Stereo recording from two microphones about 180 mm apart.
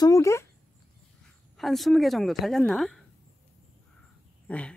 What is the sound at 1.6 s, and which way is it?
A woman's voice, centre (ahead or behind).